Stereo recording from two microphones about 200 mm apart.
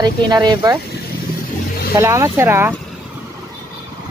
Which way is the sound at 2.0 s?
15° right (ahead or behind).